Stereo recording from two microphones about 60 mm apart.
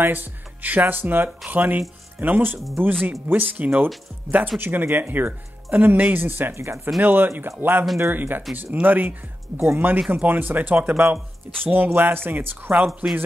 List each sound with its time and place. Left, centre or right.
0.0 s speech: right
7.0 s speech: right